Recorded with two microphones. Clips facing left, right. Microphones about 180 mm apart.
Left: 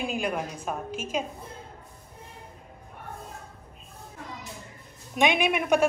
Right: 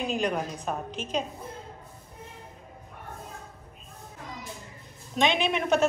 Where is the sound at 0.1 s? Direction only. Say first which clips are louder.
Right 1 dB; 10° left (ahead or behind).